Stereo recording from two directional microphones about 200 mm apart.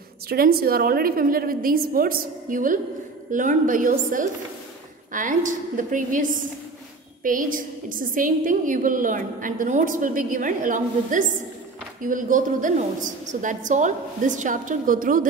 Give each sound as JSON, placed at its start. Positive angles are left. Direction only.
{"t": 0.3, "sound": "a woman's voice", "side_deg": -50}